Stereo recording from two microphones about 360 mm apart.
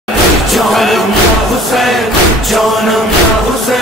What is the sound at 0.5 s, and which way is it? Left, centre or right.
Music, centre.